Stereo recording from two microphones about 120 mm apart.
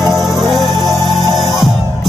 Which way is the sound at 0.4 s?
Centre (ahead or behind).